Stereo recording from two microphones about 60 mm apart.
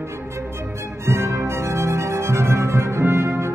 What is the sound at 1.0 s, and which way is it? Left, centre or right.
Music, right.